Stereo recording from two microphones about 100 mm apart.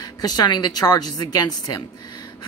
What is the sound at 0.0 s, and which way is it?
Speech, 40° left (ahead or behind).